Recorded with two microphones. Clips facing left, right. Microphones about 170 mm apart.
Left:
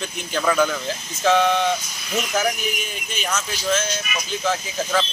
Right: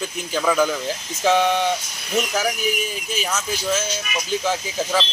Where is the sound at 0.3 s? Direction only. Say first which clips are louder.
Even; 10° right (ahead or behind).